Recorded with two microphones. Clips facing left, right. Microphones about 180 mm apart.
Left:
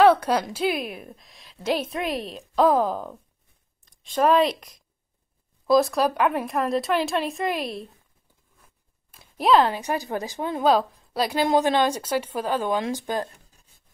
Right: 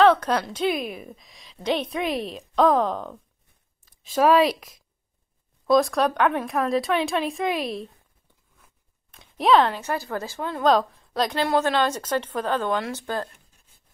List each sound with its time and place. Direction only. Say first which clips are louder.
0.0 s a woman's voice: left 1 dB; 10° left (ahead or behind)
9.1 s a sound: even; 5° left (ahead or behind)
9.8 s speech: left 1 dB; 15° left (ahead or behind)